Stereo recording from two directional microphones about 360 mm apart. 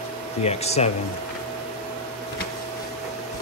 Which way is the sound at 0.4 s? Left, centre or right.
Centre.